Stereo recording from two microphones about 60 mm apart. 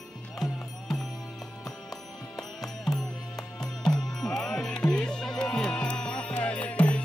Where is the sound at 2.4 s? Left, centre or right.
Centre.